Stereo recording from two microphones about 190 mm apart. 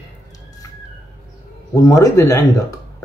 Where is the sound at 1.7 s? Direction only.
20° left (ahead or behind).